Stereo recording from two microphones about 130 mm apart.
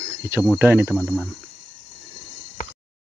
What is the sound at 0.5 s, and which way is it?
Speech, 15° right (ahead or behind).